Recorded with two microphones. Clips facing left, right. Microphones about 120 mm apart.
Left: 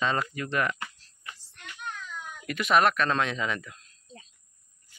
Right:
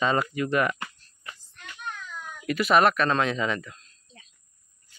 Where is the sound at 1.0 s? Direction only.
85° left.